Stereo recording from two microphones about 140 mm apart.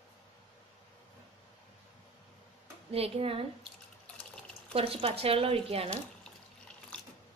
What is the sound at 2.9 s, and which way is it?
Speech, 45° right (ahead or behind).